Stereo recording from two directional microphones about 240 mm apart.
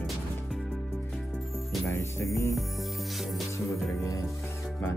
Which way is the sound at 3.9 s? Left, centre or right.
Centre.